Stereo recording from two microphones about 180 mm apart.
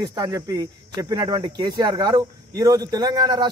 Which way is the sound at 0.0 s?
20° right (ahead or behind).